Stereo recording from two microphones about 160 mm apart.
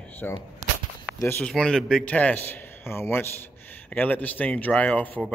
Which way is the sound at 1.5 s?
5° left (ahead or behind).